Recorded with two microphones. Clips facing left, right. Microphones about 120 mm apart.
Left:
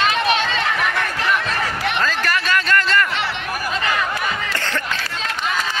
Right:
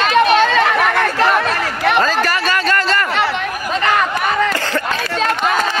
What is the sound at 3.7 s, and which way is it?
Chatter, 60° right (ahead or behind).